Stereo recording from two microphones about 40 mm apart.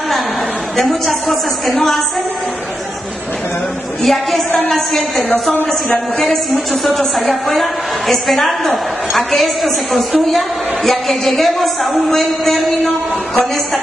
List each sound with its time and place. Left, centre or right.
0.8 s a woman's voice: centre
4.0 s a woman's voice: centre
5.3 s speech: left
6.1 s a woman's voice: centre